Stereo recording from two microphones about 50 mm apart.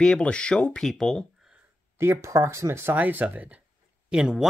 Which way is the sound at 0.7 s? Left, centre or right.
Centre.